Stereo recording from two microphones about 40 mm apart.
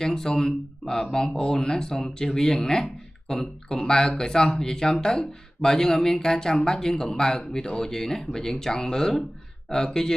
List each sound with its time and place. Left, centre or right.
0.0 s speech: centre